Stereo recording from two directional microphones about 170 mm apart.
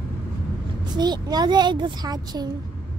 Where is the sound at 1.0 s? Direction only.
25° right (ahead or behind).